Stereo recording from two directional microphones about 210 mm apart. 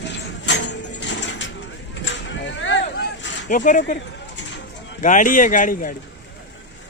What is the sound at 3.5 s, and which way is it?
Speech, 40° left (ahead or behind).